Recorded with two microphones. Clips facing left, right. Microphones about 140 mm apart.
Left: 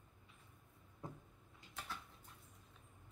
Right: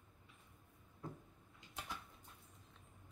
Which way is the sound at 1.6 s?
20° right (ahead or behind).